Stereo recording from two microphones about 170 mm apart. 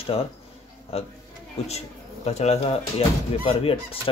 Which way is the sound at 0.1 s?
35° left (ahead or behind).